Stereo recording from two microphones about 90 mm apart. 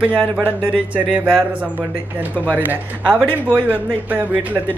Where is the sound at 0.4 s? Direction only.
15° right (ahead or behind).